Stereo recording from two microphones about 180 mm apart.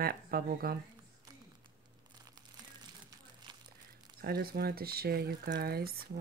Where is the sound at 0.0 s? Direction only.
60° right (ahead or behind).